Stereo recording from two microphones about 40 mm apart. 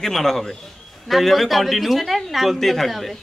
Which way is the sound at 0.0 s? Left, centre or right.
Centre.